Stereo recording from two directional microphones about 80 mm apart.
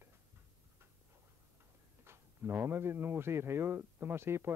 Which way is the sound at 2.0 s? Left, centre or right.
Right.